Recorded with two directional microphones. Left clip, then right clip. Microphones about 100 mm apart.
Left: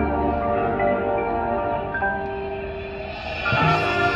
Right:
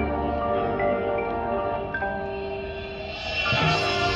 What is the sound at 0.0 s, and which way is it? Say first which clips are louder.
Tubular bells: left 4 dB; 15° right (ahead or behind).